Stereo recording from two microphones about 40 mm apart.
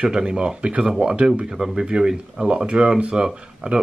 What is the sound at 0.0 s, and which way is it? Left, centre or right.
Speech, right.